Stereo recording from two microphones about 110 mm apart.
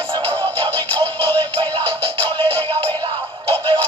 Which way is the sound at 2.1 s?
45° right (ahead or behind).